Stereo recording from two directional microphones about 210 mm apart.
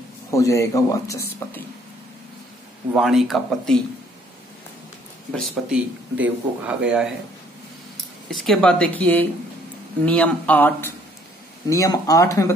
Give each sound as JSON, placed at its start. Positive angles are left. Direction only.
{"t": 0.3, "sound": "speech", "side_deg": 15}
{"t": 2.9, "sound": "speech", "side_deg": 0}
{"t": 5.5, "sound": "speech", "side_deg": -5}
{"t": 8.3, "sound": "speech", "side_deg": 0}